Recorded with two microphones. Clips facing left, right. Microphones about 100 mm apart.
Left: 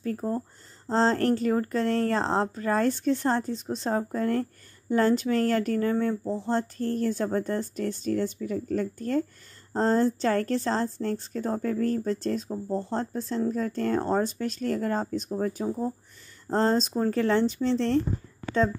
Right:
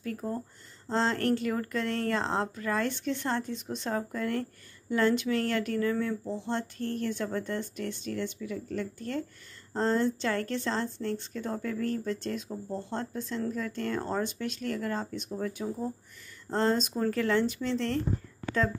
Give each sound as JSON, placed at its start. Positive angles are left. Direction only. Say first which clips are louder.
{"t": 0.0, "sound": "speech", "louder": "left 5 dB", "side_deg": 35}